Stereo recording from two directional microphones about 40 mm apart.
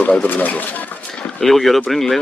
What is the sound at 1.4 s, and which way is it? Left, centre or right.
Speech, centre.